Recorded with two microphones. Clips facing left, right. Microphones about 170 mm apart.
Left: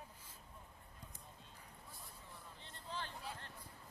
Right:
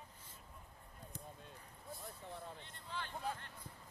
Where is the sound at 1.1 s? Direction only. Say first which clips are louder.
Right 6 dB; 55° right (ahead or behind).